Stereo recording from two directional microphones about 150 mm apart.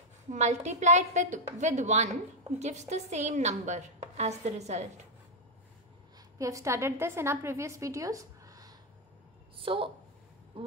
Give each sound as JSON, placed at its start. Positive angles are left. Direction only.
{"t": 0.3, "sound": "a woman's voice", "side_deg": -50}
{"t": 6.3, "sound": "a woman's voice", "side_deg": -20}
{"t": 9.6, "sound": "a sound", "side_deg": -35}